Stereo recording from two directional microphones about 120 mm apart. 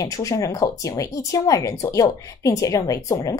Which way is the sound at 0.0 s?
25° left (ahead or behind).